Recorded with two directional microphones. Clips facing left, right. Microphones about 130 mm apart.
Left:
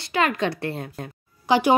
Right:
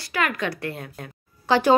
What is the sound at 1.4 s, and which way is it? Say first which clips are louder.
Speech: left 1 dB; 15° left (ahead or behind).